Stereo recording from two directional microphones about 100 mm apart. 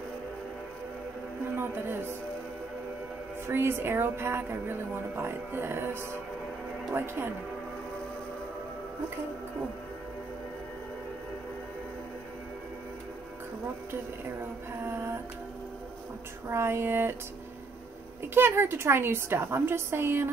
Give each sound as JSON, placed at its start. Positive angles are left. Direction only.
{"t": 1.6, "sound": "speech", "side_deg": -20}
{"t": 3.4, "sound": "speech", "side_deg": -25}
{"t": 13.9, "sound": "speech", "side_deg": -25}
{"t": 16.4, "sound": "speech", "side_deg": -25}
{"t": 18.3, "sound": "speech", "side_deg": -25}